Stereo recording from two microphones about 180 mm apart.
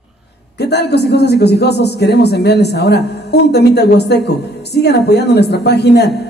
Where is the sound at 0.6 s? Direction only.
65° left (ahead or behind).